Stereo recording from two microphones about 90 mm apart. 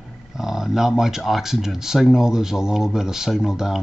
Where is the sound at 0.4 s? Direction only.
5° right (ahead or behind).